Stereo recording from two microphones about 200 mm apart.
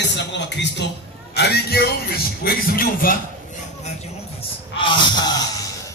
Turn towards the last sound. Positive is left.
turn(degrees=20)  # may be behind; listen again after turning